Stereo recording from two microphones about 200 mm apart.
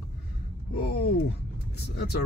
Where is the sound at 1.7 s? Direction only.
55° left (ahead or behind).